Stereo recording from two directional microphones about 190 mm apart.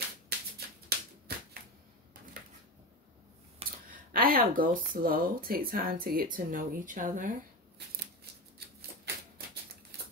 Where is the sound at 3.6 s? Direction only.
30° right (ahead or behind).